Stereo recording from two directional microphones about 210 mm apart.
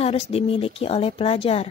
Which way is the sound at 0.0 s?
30° left (ahead or behind).